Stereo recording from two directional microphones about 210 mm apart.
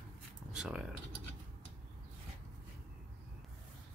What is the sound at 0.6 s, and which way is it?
Speech, 5° right (ahead or behind).